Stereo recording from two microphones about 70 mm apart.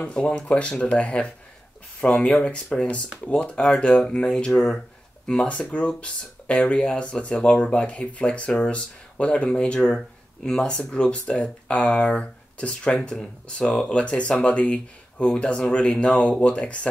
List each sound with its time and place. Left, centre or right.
0.0 s speech: centre